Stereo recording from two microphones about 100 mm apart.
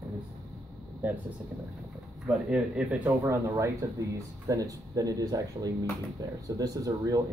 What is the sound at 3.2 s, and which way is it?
Speech, 30° right (ahead or behind).